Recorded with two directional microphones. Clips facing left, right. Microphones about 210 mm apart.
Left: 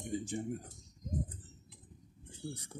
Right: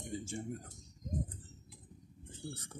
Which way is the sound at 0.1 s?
15° left (ahead or behind).